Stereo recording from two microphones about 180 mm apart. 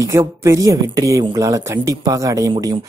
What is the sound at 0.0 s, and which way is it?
Speech, 15° right (ahead or behind).